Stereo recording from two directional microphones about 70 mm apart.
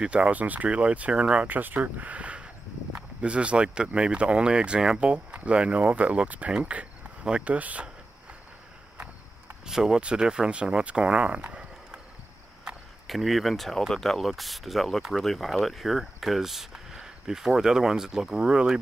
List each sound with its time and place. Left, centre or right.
0.0 s speech: centre
1.5 s speech: right
9.7 s speech: centre
13.0 s speech: centre